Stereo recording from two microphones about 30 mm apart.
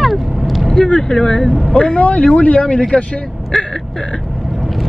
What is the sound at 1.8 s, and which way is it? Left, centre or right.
Speech, left.